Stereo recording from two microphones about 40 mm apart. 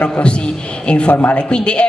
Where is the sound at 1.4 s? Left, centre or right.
Left.